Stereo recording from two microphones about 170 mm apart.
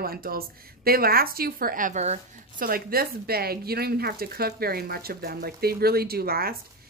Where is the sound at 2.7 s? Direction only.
60° right (ahead or behind).